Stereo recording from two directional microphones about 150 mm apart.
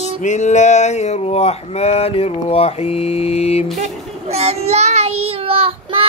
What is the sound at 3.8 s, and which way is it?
A child's voice, 45° right (ahead or behind).